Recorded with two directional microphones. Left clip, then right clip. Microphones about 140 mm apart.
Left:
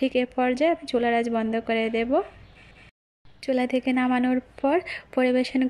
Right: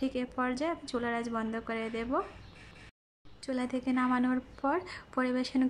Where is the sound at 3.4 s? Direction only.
15° left (ahead or behind).